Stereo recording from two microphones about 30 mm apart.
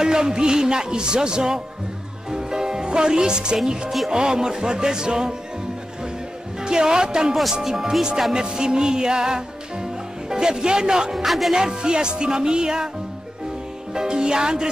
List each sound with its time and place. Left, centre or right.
0.0 s music: right
6.6 s music: right
7.6 s speech: centre
8.3 s music: right
11.2 s music: centre
11.5 s music: right
13.9 s music: right